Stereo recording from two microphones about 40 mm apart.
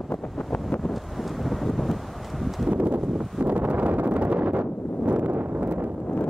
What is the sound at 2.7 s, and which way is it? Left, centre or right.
Wind noise, right.